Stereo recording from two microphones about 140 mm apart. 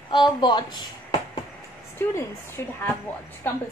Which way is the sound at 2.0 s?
15° left (ahead or behind).